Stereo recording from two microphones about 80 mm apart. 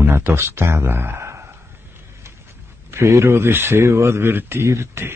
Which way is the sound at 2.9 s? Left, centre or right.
Right.